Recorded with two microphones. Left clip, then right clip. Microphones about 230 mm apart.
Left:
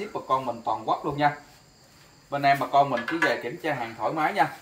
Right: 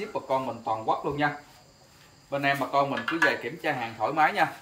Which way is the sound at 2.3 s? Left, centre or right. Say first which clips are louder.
Left 4 dB; centre.